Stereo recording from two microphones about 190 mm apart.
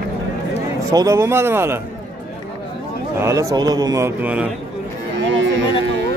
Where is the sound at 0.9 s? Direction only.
15° right (ahead or behind).